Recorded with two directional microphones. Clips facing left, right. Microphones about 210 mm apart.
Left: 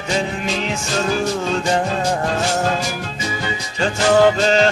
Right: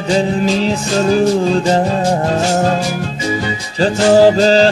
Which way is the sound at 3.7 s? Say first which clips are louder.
Right 5 dB; 35° right (ahead or behind).